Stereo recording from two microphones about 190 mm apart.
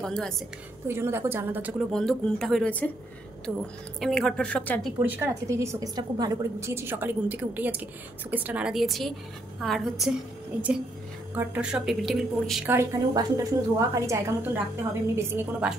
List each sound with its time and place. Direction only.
0.0 s a woman's voice: 5° left (ahead or behind)
0.8 s a woman's voice: 15° right (ahead or behind)
1.9 s a woman's voice: centre (ahead or behind)
3.5 s a woman's voice: 5° right (ahead or behind)
5.0 s a woman's voice: 10° right (ahead or behind)
11.3 s a woman's voice: 5° right (ahead or behind)
12.7 s a woman's voice: 20° right (ahead or behind)